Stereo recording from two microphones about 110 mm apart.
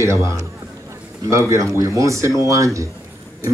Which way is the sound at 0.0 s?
25° right (ahead or behind).